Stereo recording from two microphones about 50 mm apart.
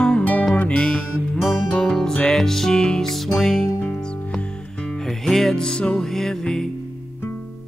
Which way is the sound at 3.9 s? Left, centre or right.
Centre.